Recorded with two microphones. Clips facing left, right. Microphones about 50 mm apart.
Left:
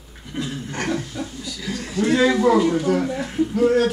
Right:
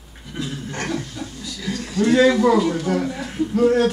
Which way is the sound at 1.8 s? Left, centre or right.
Centre.